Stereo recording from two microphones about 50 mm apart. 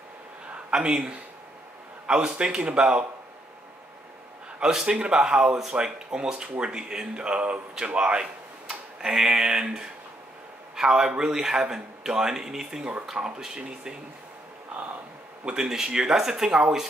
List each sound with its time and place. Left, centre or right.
0.5 s a sound: centre
2.0 s a man's voice: centre
4.6 s a man's voice: centre
15.4 s speech: centre